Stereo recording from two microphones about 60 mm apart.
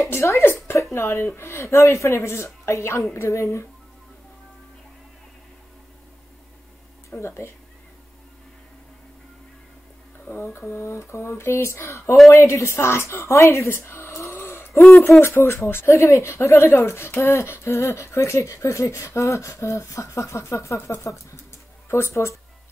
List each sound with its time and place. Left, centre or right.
0.0 s a woman's voice: left
7.1 s speech: left
10.3 s speech: left
13.7 s a sound: left
14.9 s speech: left